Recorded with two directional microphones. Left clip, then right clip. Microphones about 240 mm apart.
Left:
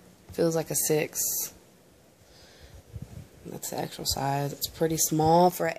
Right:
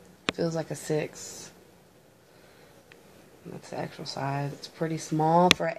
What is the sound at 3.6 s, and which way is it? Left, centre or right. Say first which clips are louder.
Speech: left 4 dB; left.